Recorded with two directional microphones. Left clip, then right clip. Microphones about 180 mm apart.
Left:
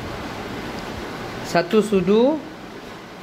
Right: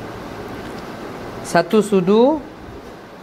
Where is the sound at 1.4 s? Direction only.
20° right (ahead or behind).